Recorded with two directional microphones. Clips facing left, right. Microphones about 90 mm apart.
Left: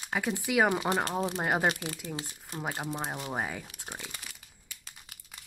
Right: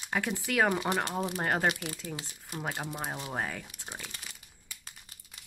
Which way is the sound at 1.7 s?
30° left (ahead or behind).